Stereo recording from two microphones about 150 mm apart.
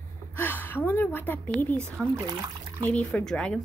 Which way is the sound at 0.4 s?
15° left (ahead or behind).